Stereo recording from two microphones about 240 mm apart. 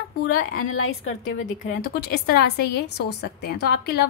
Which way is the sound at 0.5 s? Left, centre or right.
Left.